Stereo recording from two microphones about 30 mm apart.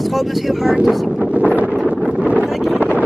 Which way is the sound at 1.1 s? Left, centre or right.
Right.